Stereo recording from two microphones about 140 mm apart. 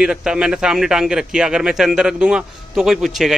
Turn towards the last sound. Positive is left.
turn(degrees=0)  # may be behind; listen again after turning